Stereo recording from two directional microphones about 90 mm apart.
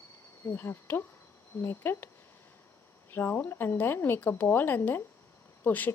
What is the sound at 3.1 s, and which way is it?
Speech, 25° left (ahead or behind).